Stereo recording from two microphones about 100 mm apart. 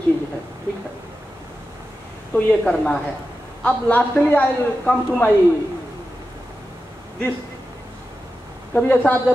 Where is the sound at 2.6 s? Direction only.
5° left (ahead or behind).